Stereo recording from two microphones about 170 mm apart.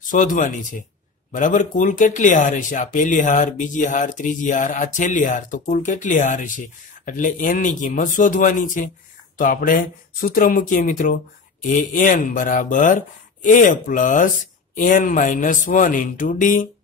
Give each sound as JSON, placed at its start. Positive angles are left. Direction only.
{"t": 0.1, "sound": "speech", "side_deg": 50}